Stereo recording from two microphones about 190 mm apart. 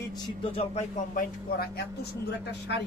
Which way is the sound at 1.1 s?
50° left (ahead or behind).